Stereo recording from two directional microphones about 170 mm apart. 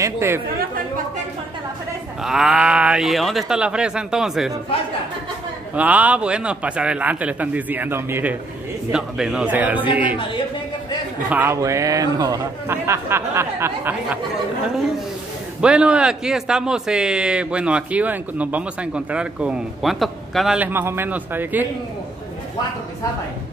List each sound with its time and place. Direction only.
0.0 s a man's voice: 15° right (ahead or behind)
2.2 s a man's voice: centre (ahead or behind)
5.8 s a man's voice: 10° right (ahead or behind)
11.2 s a man's voice: 10° right (ahead or behind)
15.6 s a man's voice: 5° right (ahead or behind)